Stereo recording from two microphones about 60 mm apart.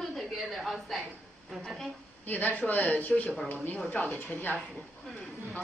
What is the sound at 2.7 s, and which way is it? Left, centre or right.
A woman's voice, centre.